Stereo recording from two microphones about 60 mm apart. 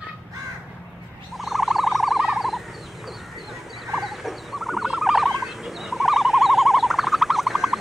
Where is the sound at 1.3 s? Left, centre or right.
Centre.